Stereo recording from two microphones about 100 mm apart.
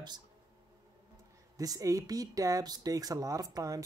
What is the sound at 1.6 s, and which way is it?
Speech, 35° right (ahead or behind).